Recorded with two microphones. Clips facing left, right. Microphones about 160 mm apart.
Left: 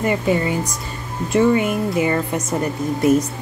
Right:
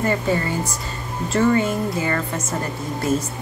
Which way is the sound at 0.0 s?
15° left (ahead or behind).